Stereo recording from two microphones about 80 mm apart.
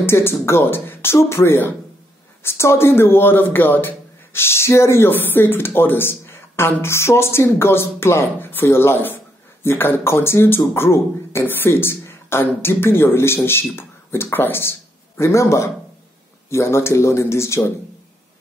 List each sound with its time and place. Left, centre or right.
0.0 s speech: left